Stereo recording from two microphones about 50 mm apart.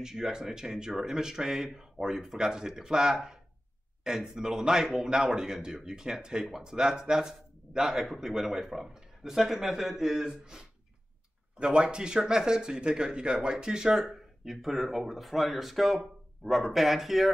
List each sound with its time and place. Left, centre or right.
0.0 s a man's voice: centre